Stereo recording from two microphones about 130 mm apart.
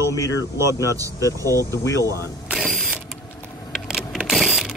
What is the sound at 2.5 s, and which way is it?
Mechanisms, centre (ahead or behind).